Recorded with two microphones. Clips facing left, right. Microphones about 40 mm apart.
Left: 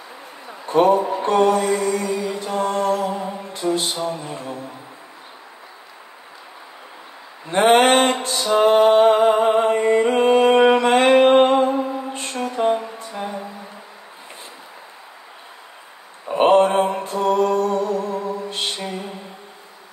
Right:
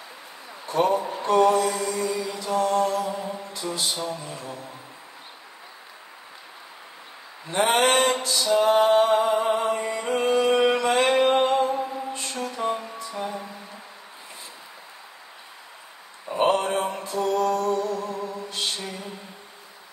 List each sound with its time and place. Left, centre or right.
0.7 s a man's voice: left
1.2 s mantra: left
7.4 s a sound: left
11.1 s music: left
16.3 s mantra: left
17.0 s music: left